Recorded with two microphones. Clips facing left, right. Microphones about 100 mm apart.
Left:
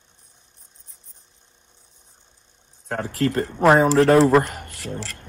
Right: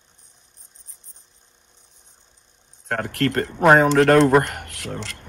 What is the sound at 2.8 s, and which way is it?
Speech, 60° right (ahead or behind).